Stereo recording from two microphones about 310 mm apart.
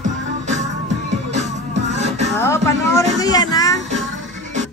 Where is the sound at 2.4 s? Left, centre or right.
Centre.